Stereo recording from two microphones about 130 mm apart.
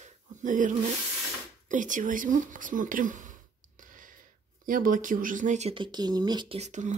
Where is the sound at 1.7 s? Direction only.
80° right.